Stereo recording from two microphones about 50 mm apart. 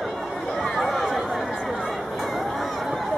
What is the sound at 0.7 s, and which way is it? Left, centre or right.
Chatter, centre.